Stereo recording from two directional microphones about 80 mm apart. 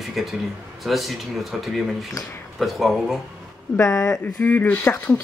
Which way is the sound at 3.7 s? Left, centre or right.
Left.